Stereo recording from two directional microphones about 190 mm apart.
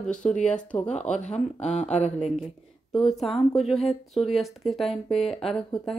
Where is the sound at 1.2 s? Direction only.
35° left (ahead or behind).